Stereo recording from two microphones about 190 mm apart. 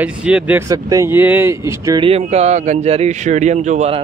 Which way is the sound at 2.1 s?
35° right (ahead or behind).